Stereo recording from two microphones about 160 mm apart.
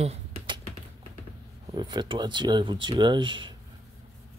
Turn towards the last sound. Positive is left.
turn(degrees=-30)  # may be behind; listen again after turning